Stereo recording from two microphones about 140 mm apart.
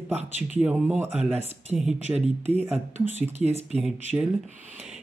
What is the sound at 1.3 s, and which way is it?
Speech, 50° right (ahead or behind).